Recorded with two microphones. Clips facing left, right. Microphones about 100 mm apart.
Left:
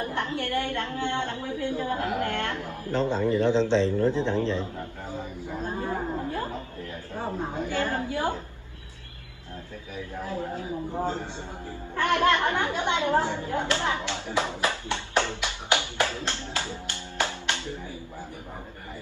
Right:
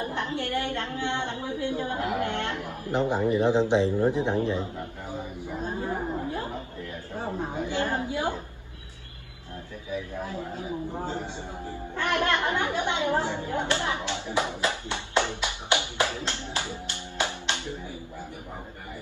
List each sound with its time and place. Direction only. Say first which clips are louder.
0.0 s a woman's voice: left 1 dB; 20° right (ahead or behind)
5.9 s a sound: even; 15° right (ahead or behind)
7.2 s a woman's voice: even; 20° right (ahead or behind)
12.2 s a woman's voice: left 2 dB; 20° right (ahead or behind)